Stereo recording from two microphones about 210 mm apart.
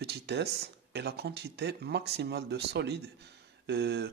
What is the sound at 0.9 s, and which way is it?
Speech, 50° right (ahead or behind).